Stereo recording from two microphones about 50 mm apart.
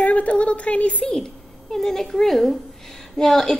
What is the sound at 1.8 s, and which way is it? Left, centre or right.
A woman's voice, centre.